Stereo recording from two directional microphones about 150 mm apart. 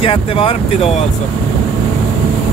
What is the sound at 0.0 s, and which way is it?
Speech, 40° left (ahead or behind).